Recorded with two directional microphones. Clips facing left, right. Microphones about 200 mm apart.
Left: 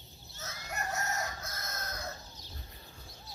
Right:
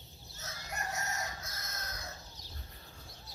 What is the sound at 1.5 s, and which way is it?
Chicken, 50° left (ahead or behind).